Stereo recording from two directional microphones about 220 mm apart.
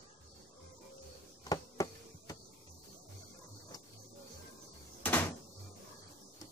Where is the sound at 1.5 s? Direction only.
15° left (ahead or behind).